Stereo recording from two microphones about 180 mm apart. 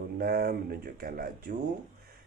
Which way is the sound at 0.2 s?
55° right (ahead or behind).